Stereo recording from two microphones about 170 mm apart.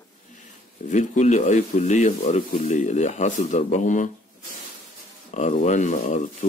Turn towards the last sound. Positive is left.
turn(degrees=45)  # may be behind; listen again after turning